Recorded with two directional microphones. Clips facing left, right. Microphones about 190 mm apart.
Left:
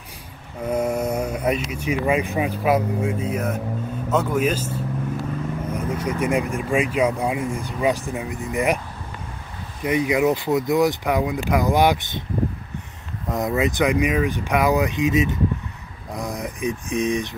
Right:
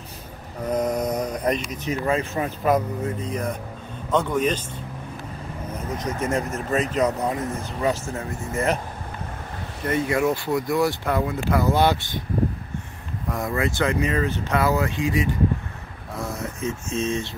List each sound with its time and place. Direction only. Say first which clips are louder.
0.7 s mantra: left 1 dB; 10° left (ahead or behind)
1.7 s speech: left 2 dB; 10° left (ahead or behind)
5.9 s speech: left 2 dB; 10° left (ahead or behind)
9.8 s speech: left 3 dB; 15° left (ahead or behind)
13.3 s speech: left 3 dB; 20° left (ahead or behind)